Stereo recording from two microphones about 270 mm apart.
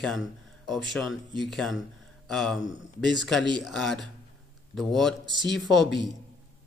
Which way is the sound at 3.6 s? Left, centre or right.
Centre.